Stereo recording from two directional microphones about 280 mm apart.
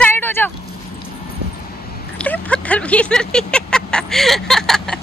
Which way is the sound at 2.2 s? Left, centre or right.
Centre.